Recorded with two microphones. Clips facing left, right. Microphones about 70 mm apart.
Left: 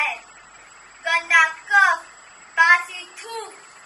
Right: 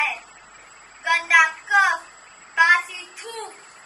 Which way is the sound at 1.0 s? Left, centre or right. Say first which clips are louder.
Even; centre.